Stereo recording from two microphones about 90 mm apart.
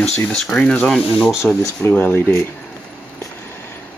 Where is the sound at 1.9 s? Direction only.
20° left (ahead or behind).